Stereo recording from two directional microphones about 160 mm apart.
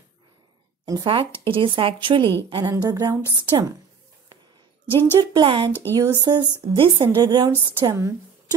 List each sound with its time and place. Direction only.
0.8 s a woman's voice: 30° right (ahead or behind)
5.2 s a woman's voice: 25° right (ahead or behind)